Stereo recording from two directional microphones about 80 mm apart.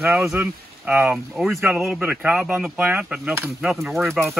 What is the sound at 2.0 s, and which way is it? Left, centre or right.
Speech, centre.